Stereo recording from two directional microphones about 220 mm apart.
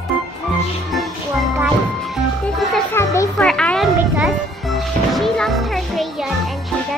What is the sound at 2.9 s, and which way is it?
Music, 15° left (ahead or behind).